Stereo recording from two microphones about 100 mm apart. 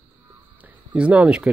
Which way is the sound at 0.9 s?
15° right (ahead or behind).